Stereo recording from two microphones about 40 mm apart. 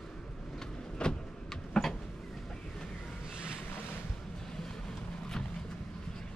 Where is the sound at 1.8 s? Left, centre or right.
Centre.